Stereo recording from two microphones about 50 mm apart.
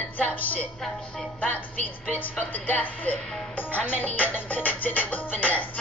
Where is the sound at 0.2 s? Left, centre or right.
Left.